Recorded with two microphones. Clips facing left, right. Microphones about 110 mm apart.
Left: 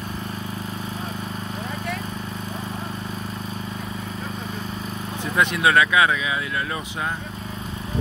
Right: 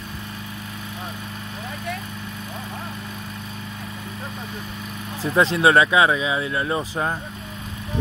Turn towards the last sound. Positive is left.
turn(degrees=-30)  # may be behind; listen again after turning